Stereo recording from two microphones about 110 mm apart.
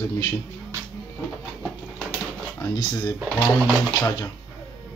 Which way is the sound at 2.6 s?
40° left (ahead or behind).